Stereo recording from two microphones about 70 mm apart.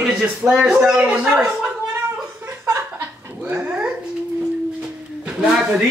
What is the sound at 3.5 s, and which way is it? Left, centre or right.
Dog, centre.